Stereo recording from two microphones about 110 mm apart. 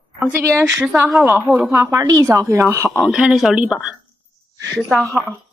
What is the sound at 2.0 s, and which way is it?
Speech, 30° right (ahead or behind).